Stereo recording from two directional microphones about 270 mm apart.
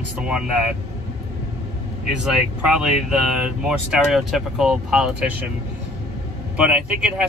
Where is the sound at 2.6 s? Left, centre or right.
Centre.